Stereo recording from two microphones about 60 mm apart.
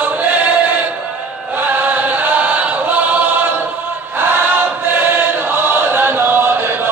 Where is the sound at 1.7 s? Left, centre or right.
Right.